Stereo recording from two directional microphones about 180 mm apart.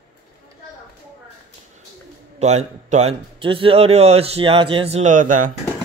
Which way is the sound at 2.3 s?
40° right (ahead or behind).